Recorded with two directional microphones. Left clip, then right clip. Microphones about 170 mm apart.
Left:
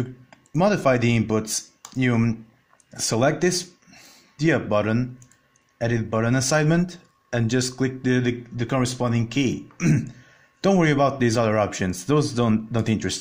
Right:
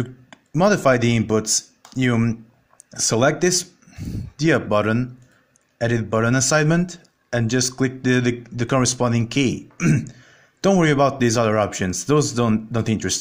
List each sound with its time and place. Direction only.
0.0 s speech: 15° right (ahead or behind)